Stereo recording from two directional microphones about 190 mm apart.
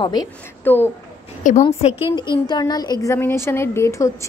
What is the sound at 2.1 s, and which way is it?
A woman's voice, 25° left (ahead or behind).